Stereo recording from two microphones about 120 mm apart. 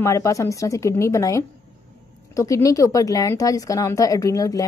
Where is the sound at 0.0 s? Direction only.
25° left (ahead or behind).